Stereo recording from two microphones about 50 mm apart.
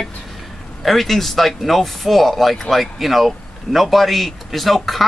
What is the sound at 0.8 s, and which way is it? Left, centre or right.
Speech, centre.